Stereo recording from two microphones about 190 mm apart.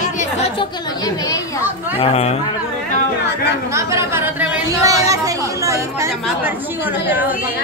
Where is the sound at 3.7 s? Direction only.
15° right (ahead or behind).